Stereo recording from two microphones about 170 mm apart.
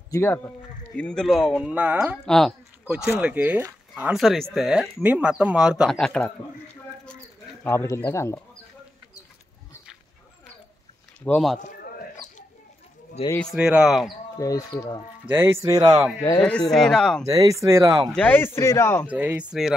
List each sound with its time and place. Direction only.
0.1 s speech: 15° left (ahead or behind); by 2.1 s 10° right (ahead or behind)
2.2 s speech: 5° left (ahead or behind)
7.6 s speech: 15° left (ahead or behind)
11.2 s speech: 5° left (ahead or behind)
13.4 s speech: centre (ahead or behind)
14.4 s speech: 20° left (ahead or behind)
15.2 s speech: 15° right (ahead or behind)
16.4 s speech: 5° left (ahead or behind)
17.3 s speech: 20° right (ahead or behind)
18.1 s speech: 10° left (ahead or behind)
19.0 s speech: 10° right (ahead or behind)